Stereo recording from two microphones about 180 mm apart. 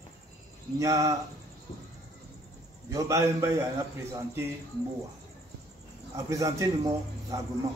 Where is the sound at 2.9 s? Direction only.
15° right (ahead or behind).